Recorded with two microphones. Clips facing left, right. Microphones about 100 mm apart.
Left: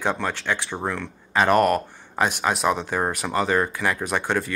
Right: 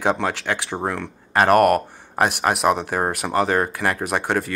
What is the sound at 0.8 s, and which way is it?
Speech, 55° right (ahead or behind).